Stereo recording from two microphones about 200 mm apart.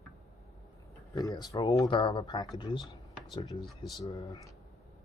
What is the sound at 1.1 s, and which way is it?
Speech, 20° left (ahead or behind).